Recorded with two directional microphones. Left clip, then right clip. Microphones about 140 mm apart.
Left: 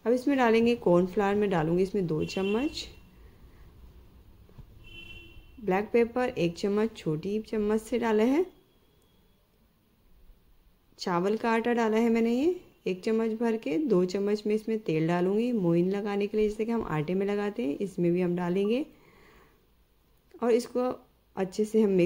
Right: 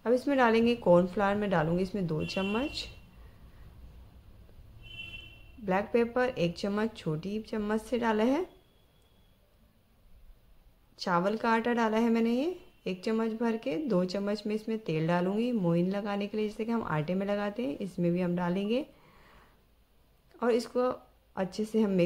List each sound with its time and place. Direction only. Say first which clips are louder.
0.0 s speech: left 1 dB; 25° left (ahead or behind)
5.7 s speech: left 3 dB; 25° left (ahead or behind)
11.0 s speech: left 1 dB; 25° left (ahead or behind)